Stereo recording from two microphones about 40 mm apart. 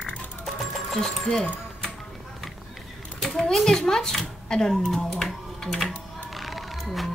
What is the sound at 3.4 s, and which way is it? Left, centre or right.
A child's voice, centre.